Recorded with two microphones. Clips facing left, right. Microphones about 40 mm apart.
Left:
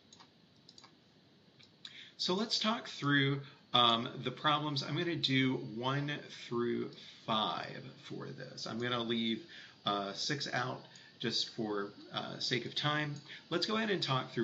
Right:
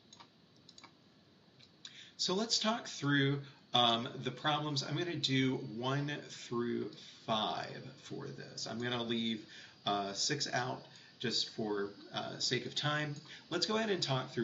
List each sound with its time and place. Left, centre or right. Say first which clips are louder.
1.8 s speech: even; centre